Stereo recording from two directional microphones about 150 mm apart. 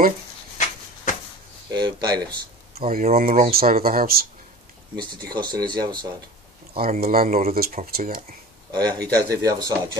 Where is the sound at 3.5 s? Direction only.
85° right.